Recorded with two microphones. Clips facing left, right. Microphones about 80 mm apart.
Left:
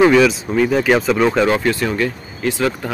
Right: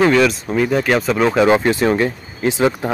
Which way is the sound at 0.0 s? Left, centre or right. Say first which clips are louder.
Left 2 dB; centre.